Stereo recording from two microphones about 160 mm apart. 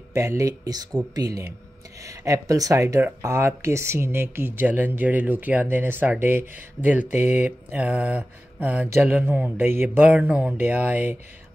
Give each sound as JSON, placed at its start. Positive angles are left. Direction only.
{"t": 0.1, "sound": "speech", "side_deg": -20}